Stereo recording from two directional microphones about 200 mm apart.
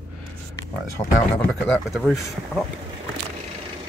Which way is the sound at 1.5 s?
Centre (ahead or behind).